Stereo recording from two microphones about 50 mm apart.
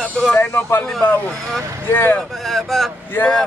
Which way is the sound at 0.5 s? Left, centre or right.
Left.